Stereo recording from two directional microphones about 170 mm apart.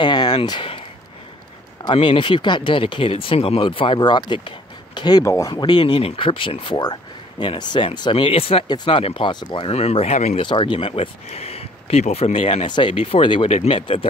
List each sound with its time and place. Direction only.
0.0 s a sound: 25° left (ahead or behind)
1.8 s speech: 30° left (ahead or behind)
10.4 s speech: 30° left (ahead or behind)